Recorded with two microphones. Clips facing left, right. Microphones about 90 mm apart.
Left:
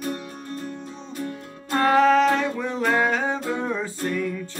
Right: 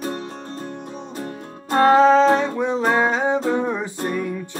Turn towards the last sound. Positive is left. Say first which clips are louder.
# right 2 dB
turn(degrees=-20)  # may be behind; listen again after turning